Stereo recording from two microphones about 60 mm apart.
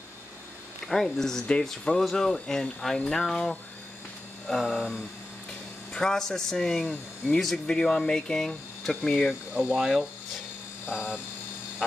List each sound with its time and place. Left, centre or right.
0.8 s speech: centre
9.5 s speech: centre
9.8 s speech: centre